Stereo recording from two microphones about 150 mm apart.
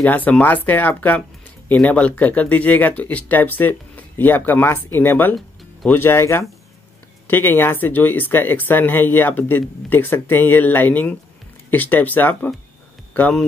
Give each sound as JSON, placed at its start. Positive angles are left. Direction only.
{"t": 0.0, "sound": "speech", "side_deg": 10}